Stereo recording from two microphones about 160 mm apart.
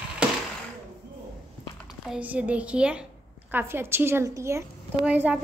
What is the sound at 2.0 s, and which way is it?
A woman's voice, 10° right (ahead or behind).